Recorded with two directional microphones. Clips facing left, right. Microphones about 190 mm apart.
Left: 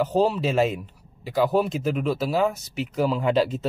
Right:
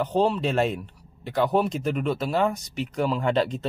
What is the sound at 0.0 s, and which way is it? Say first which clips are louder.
Speech: left 1 dB; 5° left (ahead or behind).